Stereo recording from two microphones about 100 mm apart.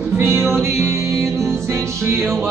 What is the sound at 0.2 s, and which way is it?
Music, 25° right (ahead or behind).